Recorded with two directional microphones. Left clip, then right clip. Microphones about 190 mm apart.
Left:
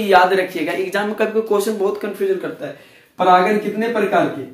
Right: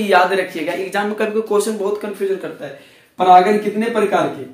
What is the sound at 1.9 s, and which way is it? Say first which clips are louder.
Speech: even; 20° left (ahead or behind).